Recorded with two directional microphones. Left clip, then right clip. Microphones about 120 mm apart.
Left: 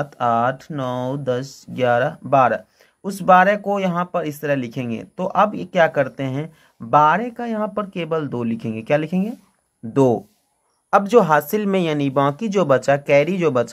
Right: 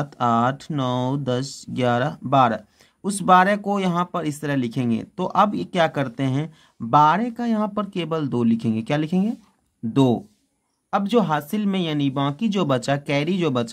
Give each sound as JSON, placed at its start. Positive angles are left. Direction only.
{"t": 0.0, "sound": "speech", "side_deg": -40}
{"t": 10.9, "sound": "speech", "side_deg": -5}